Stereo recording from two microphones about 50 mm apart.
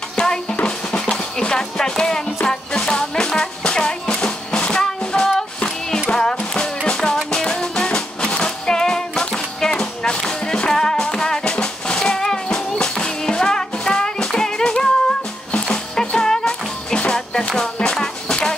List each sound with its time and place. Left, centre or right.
0.1 s drum: centre
1.4 s music: centre